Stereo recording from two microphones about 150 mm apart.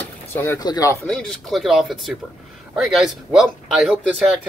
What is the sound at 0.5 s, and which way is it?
Speech, 25° left (ahead or behind).